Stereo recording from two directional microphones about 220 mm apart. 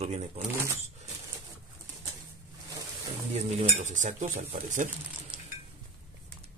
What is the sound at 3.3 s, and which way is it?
Speech, 35° right (ahead or behind).